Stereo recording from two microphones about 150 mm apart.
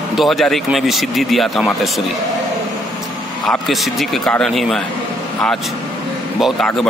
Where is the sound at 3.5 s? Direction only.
Centre (ahead or behind).